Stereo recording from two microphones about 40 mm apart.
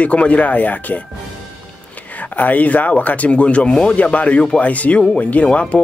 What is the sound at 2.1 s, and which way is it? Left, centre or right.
A man's voice, left.